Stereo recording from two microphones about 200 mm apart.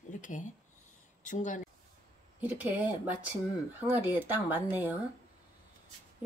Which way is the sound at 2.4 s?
10° right (ahead or behind).